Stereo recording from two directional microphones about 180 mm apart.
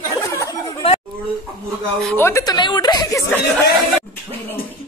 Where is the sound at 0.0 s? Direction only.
20° left (ahead or behind).